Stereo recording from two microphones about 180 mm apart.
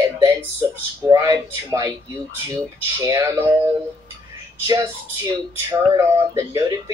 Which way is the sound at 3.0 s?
15° right (ahead or behind).